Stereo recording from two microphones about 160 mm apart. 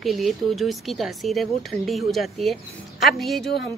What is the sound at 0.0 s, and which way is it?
Speech, centre (ahead or behind).